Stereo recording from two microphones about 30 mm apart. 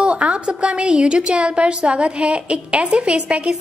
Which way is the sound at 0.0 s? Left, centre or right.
Right.